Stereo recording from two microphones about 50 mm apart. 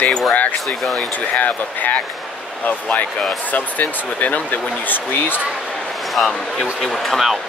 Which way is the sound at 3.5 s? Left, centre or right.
Left.